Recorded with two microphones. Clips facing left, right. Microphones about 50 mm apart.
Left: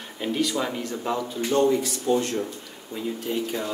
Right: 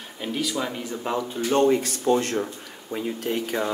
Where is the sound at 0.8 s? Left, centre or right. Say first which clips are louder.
Even; centre.